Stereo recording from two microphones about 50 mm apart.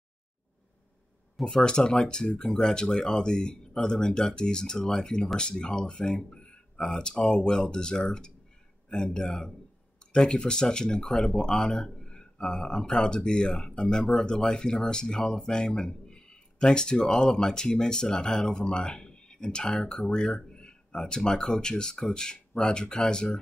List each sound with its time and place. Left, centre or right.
1.4 s speech: centre